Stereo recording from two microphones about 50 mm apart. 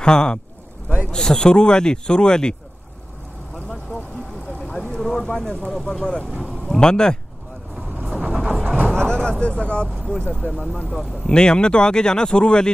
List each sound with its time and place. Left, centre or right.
0.0 s speech: centre
4.6 s a sound: centre
5.7 s speech: centre
8.1 s vehicle: centre
8.9 s speech: centre